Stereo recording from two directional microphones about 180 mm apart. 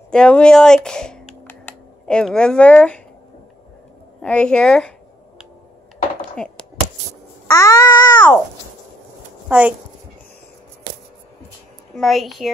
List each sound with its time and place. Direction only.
0.1 s speech: 5° left (ahead or behind)
4.2 s speech: 5° left (ahead or behind)
6.3 s a sound: 5° left (ahead or behind)
7.4 s babbling: 15° left (ahead or behind)
9.5 s a woman's voice: 5° right (ahead or behind)
11.9 s speech: centre (ahead or behind)